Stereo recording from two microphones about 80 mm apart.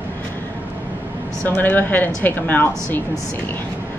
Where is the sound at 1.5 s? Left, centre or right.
Left.